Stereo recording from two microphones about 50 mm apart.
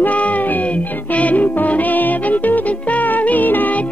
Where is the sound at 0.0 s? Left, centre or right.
Left.